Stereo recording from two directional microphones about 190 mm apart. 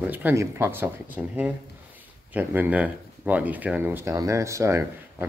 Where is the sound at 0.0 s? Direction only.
10° right (ahead or behind).